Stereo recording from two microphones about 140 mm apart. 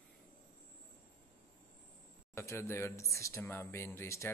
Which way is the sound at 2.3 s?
20° left (ahead or behind).